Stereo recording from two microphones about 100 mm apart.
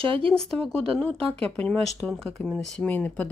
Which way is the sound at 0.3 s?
5° left (ahead or behind).